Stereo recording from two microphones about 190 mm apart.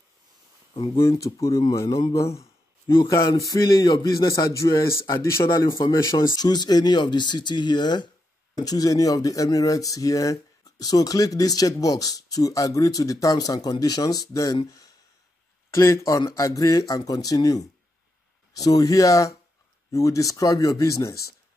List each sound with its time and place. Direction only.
0.7 s a man's voice: 20° left (ahead or behind)